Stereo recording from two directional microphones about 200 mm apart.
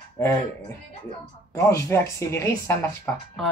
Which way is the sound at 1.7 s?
15° left (ahead or behind).